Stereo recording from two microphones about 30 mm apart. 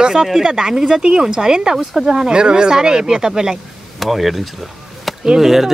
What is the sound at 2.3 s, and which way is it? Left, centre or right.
Speech, right.